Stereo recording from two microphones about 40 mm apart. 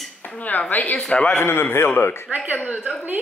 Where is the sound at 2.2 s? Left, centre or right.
Right.